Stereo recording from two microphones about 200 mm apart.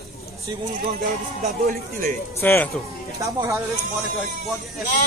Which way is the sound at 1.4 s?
40° right (ahead or behind).